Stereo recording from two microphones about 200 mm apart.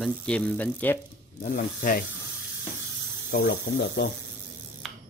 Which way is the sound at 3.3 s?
55° left (ahead or behind).